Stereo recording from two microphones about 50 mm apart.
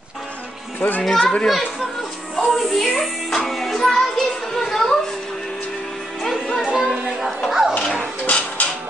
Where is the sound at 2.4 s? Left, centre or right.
Centre.